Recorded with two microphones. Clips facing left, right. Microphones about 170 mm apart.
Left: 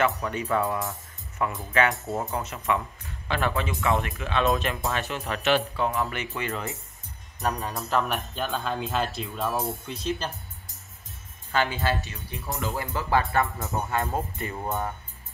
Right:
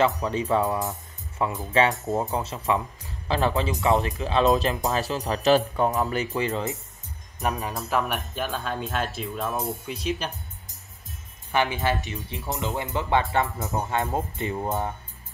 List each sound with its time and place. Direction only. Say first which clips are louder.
0.0 s speech: right 3 dB; 25° right (ahead or behind)
2.4 s speech: right 2 dB; 30° right (ahead or behind)
7.5 s speech: even; 5° right (ahead or behind)
9.9 s speech: even; 15° right (ahead or behind)
11.5 s speech: right 2 dB; 20° right (ahead or behind)